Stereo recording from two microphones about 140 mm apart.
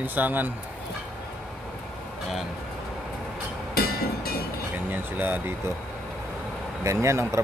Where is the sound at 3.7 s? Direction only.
90° left.